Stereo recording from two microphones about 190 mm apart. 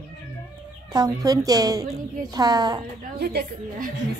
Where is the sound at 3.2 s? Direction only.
55° right (ahead or behind).